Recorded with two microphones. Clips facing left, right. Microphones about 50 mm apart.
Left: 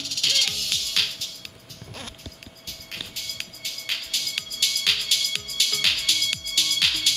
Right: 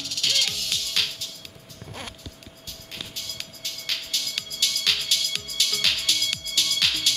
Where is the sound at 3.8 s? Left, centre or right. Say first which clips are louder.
Left 1 dB; centre.